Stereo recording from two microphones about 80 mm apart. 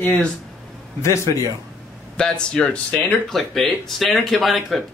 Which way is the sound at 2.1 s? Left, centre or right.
Centre.